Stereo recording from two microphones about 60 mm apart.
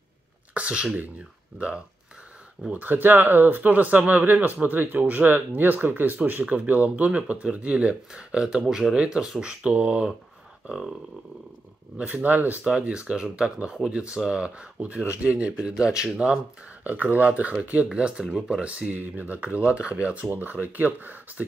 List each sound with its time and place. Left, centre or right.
0.6 s speech: centre
10.7 s speech: centre
12.0 s speech: right
12.6 s speech: centre
16.8 s speech: right